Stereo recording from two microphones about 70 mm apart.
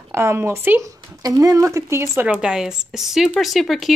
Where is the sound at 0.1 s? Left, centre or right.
Right.